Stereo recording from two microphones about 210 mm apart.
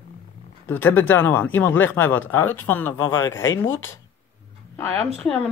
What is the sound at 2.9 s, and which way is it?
Speech, 90° left.